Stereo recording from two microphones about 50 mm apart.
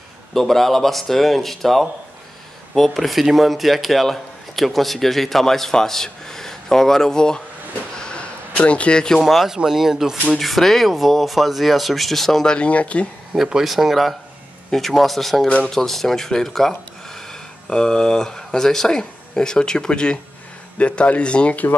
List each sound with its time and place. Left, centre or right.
0.3 s a man's voice: centre
7.9 s a sound: centre
9.2 s a man's voice: centre
10.3 s a man's voice: centre
12.4 s speech: left
13.3 s a man's voice: centre; by 21.6 s left